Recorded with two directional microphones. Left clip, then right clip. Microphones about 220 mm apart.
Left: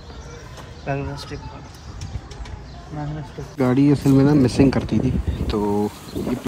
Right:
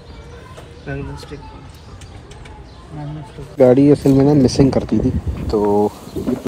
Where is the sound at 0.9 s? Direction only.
35° left (ahead or behind).